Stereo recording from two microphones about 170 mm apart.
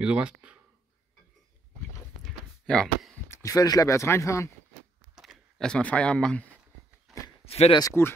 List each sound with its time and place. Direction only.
0.0 s speech: 5° right (ahead or behind)
2.2 s a sound: 5° left (ahead or behind)
3.3 s speech: 20° left (ahead or behind)
5.1 s speech: centre (ahead or behind)
7.1 s a sound: centre (ahead or behind)
7.4 s speech: 35° left (ahead or behind)
7.8 s speech: 15° left (ahead or behind)